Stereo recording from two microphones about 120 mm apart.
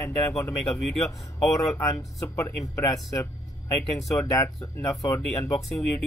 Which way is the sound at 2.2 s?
25° left (ahead or behind).